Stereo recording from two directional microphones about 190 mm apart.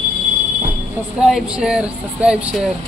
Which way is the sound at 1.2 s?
5° right (ahead or behind).